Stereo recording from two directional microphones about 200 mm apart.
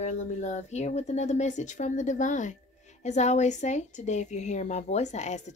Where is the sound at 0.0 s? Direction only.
35° left (ahead or behind).